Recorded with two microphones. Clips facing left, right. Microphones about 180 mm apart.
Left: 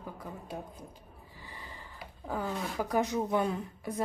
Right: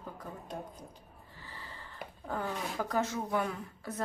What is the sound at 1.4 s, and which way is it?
Gasp, 15° left (ahead or behind).